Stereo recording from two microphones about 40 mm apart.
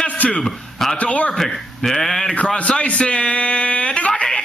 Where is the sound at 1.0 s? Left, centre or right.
Left.